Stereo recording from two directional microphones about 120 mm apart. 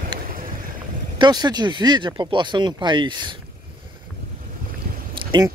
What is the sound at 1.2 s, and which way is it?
Speech, 35° right (ahead or behind).